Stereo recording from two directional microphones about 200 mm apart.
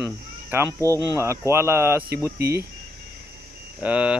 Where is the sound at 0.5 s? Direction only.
10° right (ahead or behind).